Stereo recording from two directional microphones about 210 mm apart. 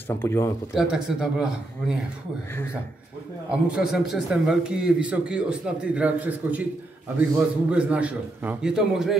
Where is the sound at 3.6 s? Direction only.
5° right (ahead or behind).